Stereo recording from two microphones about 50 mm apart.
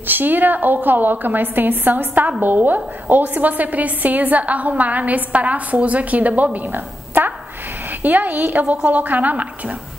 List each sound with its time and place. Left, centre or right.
0.0 s a woman's voice: right